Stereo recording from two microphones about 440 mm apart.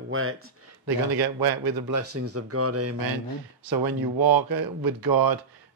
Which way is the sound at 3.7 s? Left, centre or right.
Right.